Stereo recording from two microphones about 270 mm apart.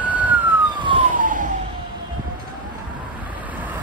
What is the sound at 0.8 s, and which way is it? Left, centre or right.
Emergency vehicle, right.